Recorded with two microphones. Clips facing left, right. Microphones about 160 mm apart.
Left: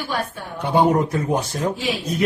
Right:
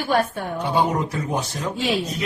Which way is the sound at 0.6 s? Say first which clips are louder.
Left 5 dB; 55° left (ahead or behind).